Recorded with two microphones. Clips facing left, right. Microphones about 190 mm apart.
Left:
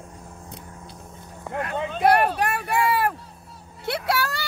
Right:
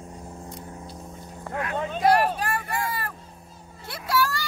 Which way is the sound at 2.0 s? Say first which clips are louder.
Left 2 dB; 60° left (ahead or behind).